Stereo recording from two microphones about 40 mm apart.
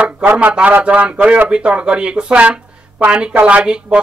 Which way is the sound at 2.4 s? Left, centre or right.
Right.